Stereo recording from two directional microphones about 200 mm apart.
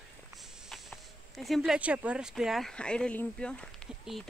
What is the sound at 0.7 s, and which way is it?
Speech, centre (ahead or behind).